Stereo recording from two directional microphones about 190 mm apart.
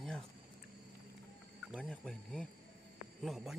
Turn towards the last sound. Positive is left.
turn(degrees=0)  # may be behind; listen again after turning